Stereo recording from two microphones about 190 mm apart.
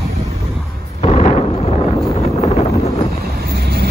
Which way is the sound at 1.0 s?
35° left (ahead or behind).